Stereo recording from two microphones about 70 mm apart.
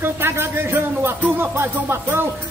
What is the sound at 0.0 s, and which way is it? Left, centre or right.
Speech, right.